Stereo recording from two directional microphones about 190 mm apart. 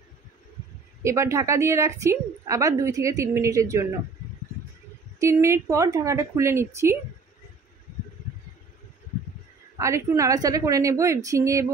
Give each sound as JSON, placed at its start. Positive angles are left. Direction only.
{"t": 1.0, "sound": "a woman's voice", "side_deg": -15}
{"t": 5.2, "sound": "a woman's voice", "side_deg": -15}
{"t": 9.8, "sound": "a woman's voice", "side_deg": -15}